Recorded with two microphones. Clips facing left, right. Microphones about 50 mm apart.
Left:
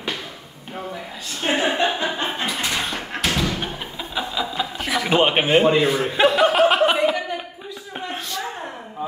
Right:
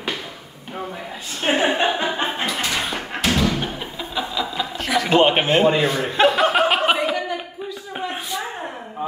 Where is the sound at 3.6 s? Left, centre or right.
Centre.